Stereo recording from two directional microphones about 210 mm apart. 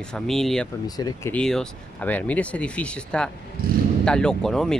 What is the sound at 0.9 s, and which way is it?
Speech, 15° left (ahead or behind).